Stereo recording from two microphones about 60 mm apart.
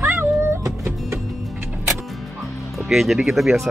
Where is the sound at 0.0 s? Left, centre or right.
Right.